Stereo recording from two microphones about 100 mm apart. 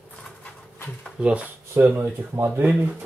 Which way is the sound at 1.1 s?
10° right (ahead or behind).